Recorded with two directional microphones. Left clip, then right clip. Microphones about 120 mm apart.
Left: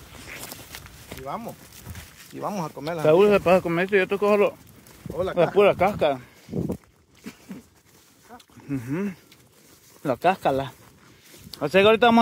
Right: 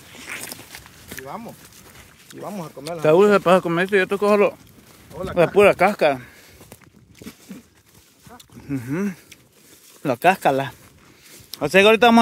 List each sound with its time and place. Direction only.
1.2 s speech: 40° left (ahead or behind)
3.0 s speech: 40° right (ahead or behind)
5.3 s speech: 60° right (ahead or behind)
8.3 s a sound: 35° right (ahead or behind)
10.0 s speech: 60° right (ahead or behind); by 12.2 s 40° right (ahead or behind)